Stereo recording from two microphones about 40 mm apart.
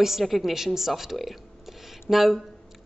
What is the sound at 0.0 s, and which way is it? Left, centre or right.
A woman's voice, centre.